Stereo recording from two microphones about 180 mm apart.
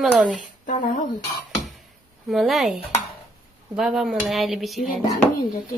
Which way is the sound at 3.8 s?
Centre (ahead or behind).